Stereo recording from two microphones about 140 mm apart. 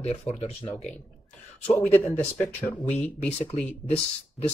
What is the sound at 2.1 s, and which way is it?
Speech, 5° left (ahead or behind).